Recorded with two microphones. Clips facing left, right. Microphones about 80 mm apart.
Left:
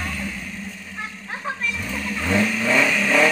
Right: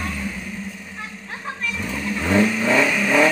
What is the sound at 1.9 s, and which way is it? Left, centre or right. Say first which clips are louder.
Vehicle: right 3 dB; centre.